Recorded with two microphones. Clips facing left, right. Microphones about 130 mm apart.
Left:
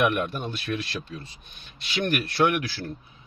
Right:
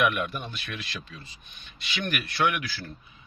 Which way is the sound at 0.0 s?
35° left (ahead or behind).